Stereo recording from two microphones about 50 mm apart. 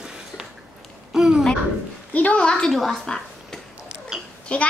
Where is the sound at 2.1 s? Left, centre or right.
Left.